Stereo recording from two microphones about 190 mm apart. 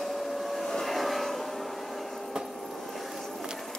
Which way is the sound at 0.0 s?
Centre (ahead or behind).